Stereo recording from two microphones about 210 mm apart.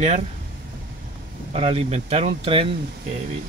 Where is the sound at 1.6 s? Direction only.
25° right (ahead or behind).